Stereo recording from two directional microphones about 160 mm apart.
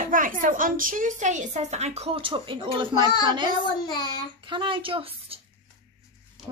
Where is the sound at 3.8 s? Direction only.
25° left (ahead or behind).